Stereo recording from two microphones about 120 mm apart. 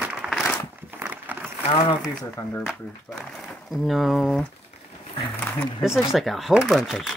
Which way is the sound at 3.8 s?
Centre (ahead or behind).